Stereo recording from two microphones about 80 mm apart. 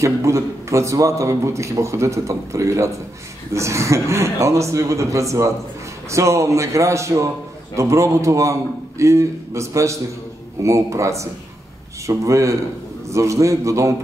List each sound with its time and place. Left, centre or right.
0.0 s a man's voice: right